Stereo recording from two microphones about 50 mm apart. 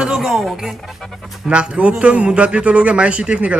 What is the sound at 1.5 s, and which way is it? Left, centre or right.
A man's voice, right.